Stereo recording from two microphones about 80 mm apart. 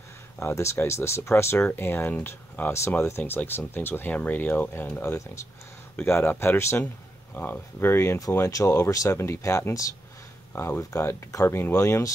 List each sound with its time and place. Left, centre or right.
0.4 s speech: left
5.0 s speech: left
10.5 s speech: left
10.8 s speech: left